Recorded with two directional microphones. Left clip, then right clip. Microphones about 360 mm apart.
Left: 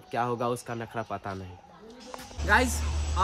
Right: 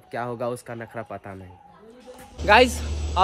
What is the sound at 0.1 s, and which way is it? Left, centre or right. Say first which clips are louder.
Speech: even; centre.